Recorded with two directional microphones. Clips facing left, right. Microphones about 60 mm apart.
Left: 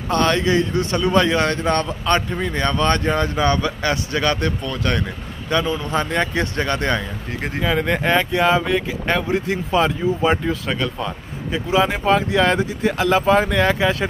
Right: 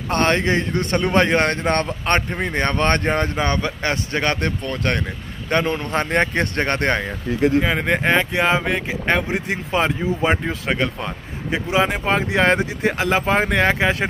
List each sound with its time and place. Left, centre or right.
0.1 s a man's voice: right
7.6 s speech: right